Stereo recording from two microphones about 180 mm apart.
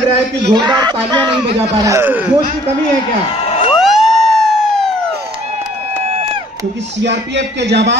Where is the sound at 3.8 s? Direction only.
Centre (ahead or behind).